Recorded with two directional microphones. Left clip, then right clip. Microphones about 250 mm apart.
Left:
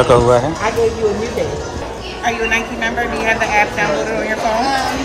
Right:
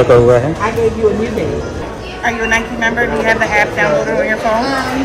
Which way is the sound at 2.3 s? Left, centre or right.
Left.